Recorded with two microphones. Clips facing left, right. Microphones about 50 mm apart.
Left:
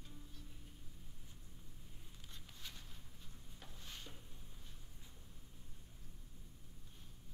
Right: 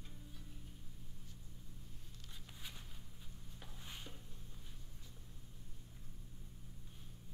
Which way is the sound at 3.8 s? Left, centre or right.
Centre.